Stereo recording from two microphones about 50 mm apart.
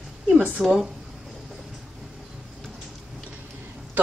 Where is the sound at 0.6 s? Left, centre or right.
Centre.